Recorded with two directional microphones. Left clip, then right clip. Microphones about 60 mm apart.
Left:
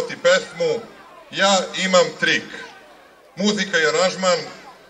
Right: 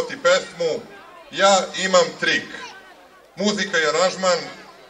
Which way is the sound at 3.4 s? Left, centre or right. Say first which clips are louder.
Left 1 dB; left.